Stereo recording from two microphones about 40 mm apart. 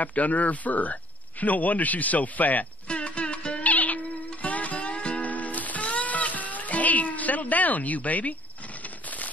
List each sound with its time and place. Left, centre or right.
0.0 s a man's voice: left
2.9 s music: left
3.6 s music: left
5.2 s music: left